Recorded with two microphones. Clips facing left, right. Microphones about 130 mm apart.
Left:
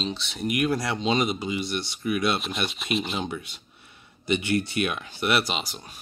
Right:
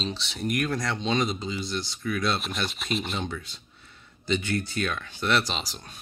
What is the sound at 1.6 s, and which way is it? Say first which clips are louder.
Speech: left 2 dB; 65° left (ahead or behind).